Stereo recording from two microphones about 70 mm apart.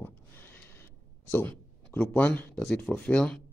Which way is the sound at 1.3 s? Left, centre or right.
Left.